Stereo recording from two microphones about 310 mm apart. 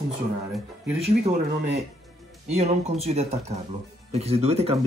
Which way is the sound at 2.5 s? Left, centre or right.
Centre.